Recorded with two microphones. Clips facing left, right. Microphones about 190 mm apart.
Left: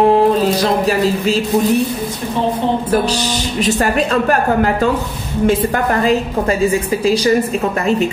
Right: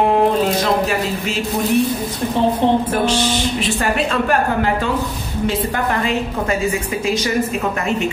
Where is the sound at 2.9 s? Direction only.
40° left (ahead or behind).